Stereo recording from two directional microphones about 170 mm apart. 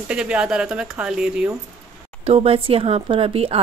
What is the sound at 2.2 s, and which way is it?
Speech, 35° right (ahead or behind).